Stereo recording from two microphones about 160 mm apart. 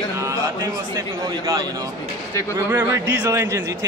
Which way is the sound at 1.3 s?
25° right (ahead or behind).